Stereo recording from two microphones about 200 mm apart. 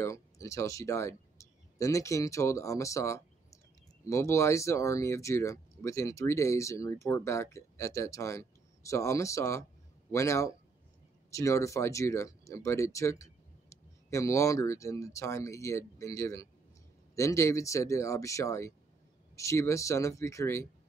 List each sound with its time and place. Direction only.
0.0 s speech: 15° left (ahead or behind)